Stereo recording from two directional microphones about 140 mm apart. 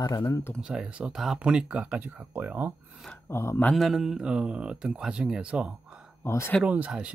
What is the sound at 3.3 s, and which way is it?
Speech, 20° left (ahead or behind).